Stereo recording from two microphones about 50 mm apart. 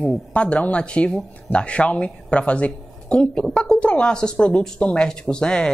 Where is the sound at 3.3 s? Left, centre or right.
Centre.